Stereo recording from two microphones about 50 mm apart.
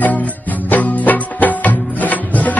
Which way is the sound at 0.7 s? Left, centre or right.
Left.